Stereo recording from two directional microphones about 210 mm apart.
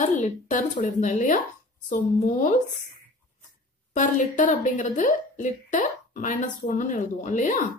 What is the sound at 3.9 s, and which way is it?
A woman's voice, 35° left (ahead or behind).